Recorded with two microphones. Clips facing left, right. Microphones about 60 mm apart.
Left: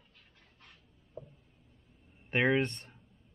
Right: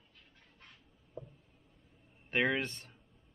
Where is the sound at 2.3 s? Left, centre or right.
Left.